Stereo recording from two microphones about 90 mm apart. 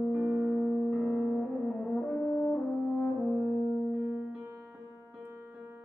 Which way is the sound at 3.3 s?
Centre (ahead or behind).